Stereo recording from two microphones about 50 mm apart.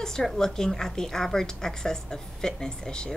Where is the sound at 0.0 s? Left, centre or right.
Centre.